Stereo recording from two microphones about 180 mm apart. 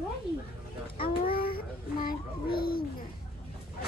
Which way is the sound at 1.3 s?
55° left (ahead or behind).